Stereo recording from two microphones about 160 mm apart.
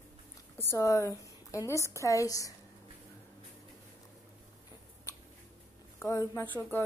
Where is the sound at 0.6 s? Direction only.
15° left (ahead or behind).